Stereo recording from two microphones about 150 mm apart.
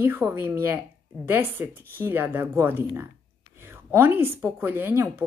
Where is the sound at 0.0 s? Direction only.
15° right (ahead or behind).